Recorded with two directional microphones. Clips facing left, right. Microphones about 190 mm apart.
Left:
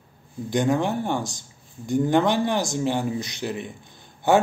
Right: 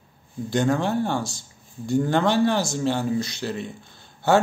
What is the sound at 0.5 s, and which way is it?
Speech, 15° left (ahead or behind).